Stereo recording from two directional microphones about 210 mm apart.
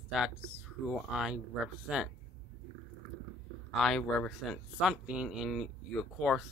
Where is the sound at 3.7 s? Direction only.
Centre (ahead or behind).